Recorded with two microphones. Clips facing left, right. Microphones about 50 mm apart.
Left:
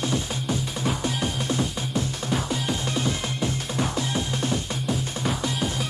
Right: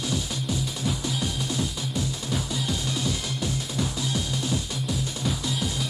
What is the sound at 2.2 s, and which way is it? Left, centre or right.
Music, left.